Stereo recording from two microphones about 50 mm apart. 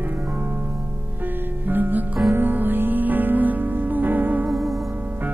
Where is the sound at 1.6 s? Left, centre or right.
Right.